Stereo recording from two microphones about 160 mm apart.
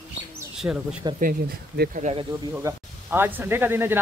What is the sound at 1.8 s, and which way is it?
Speech, 50° right (ahead or behind).